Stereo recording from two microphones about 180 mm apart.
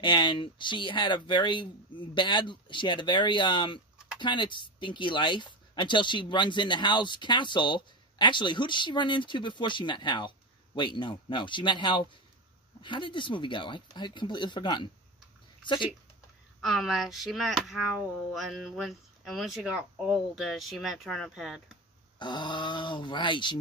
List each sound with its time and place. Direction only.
0.0 s speech: 25° left (ahead or behind)
16.6 s speech: centre (ahead or behind)
22.2 s speech: 25° left (ahead or behind)